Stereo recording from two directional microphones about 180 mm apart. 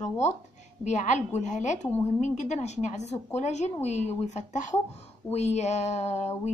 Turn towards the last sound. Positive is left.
turn(degrees=40)  # may be behind; listen again after turning